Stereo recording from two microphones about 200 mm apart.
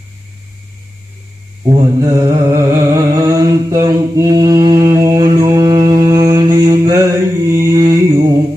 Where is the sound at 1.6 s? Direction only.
15° right (ahead or behind).